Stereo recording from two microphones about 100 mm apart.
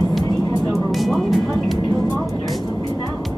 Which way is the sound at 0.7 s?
Centre (ahead or behind).